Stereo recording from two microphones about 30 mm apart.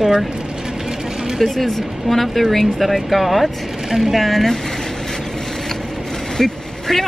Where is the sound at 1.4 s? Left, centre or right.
Centre.